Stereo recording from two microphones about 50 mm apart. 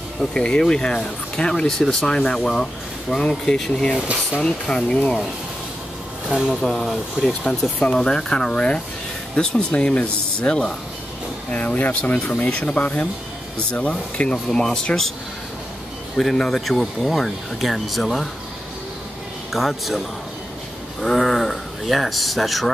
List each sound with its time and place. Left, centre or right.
0.3 s speech: centre
6.2 s speech: centre
6.6 s speech: centre
7.8 s speech: centre
14.3 s speech: centre
16.2 s speech: centre
19.5 s speech: centre
21.0 s speech: centre